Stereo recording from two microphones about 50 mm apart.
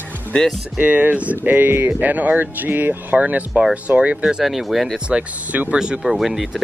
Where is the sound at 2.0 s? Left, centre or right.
Right.